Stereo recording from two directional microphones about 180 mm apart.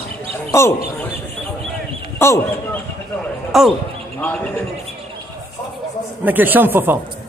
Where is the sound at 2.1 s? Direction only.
15° left (ahead or behind).